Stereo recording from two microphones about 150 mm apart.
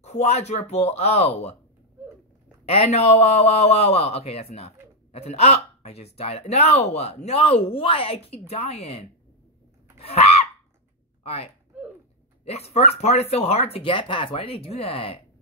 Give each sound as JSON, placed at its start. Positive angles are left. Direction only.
{"t": 0.0, "sound": "speech", "side_deg": 50}
{"t": 2.6, "sound": "speech", "side_deg": 45}
{"t": 9.9, "sound": "goose", "side_deg": 40}
{"t": 11.2, "sound": "speech", "side_deg": 40}